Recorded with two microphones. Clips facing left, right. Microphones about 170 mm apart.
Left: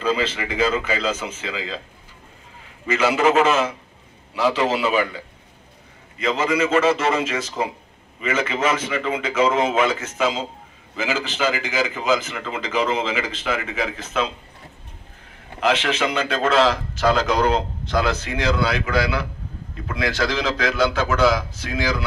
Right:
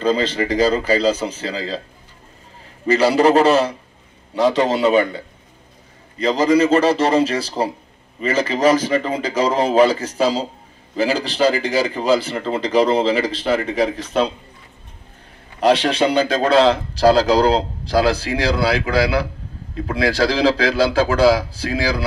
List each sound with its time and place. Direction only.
0.0 s a man's voice: 35° right (ahead or behind)
2.9 s a man's voice: 35° right (ahead or behind)
15.6 s a man's voice: 35° right (ahead or behind)